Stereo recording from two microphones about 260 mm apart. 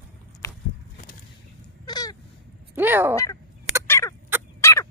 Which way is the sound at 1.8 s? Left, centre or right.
Centre.